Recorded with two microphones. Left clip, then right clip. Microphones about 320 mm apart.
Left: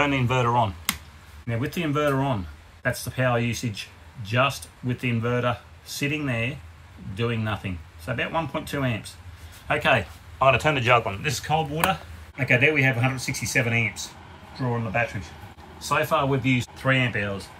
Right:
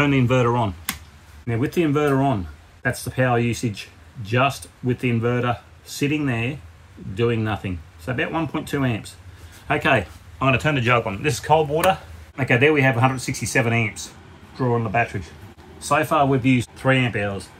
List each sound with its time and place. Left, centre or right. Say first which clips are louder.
0.0 s speech: right 3 dB; centre
11.2 s speech: right 7 dB; centre